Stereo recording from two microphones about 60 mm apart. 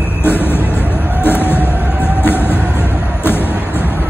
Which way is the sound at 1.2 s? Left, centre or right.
Left.